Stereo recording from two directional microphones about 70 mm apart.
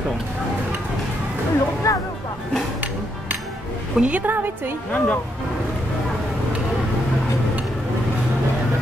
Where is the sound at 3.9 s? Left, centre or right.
Centre.